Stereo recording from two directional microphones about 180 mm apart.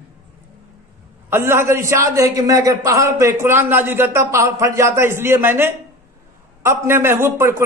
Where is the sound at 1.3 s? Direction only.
15° right (ahead or behind).